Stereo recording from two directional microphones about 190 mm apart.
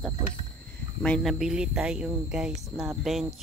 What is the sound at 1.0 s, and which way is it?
Speech, centre (ahead or behind).